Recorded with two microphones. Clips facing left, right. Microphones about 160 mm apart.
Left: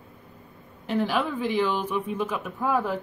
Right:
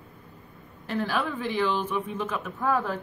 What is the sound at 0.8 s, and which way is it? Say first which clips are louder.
Speech: left 3 dB; 15° left (ahead or behind).